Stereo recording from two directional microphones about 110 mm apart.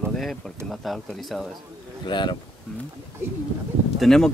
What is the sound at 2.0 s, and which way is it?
Speech, 45° left (ahead or behind).